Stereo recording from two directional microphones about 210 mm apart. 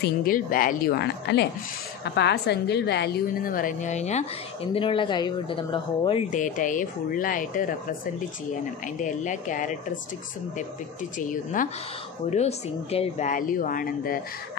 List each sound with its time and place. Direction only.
0.0 s a woman's voice: 45° left (ahead or behind); by 6.2 s 25° left (ahead or behind)
6.3 s speech: 40° left (ahead or behind)
9.0 s speech: 35° left (ahead or behind)
11.1 s speech: 40° left (ahead or behind)